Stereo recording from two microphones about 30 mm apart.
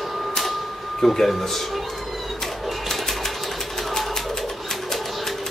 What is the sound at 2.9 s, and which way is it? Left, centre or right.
Sewing machine, centre.